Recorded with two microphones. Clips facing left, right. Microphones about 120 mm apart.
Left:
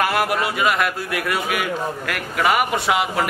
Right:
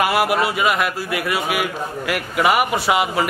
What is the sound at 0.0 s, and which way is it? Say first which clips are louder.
A man's voice: right 2 dB; 5° right (ahead or behind).